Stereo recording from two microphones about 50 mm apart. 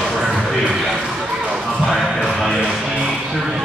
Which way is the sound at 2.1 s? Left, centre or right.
Centre.